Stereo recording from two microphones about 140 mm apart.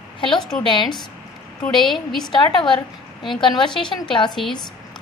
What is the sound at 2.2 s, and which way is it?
A woman's voice, 30° left (ahead or behind).